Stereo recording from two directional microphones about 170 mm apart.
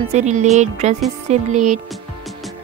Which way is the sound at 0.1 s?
45° right (ahead or behind).